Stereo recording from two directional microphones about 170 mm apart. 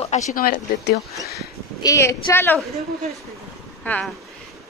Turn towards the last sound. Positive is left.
turn(degrees=10)  # may be behind; listen again after turning